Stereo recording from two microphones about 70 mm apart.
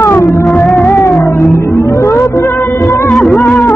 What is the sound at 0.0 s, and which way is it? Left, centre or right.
Music, left.